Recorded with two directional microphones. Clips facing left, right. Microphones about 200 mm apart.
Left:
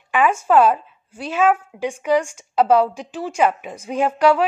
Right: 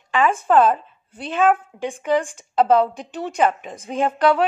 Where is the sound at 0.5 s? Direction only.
10° left (ahead or behind).